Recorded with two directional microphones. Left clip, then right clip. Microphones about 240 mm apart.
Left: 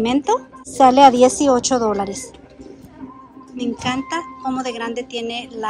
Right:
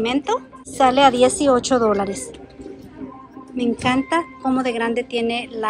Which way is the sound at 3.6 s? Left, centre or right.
Centre.